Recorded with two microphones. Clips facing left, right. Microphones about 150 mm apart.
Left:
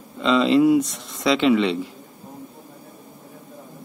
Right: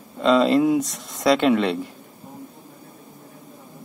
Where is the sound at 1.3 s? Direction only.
50° right (ahead or behind).